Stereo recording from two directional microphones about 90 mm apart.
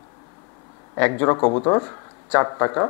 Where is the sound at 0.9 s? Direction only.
20° left (ahead or behind).